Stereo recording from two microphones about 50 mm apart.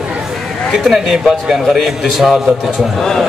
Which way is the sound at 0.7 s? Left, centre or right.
Centre.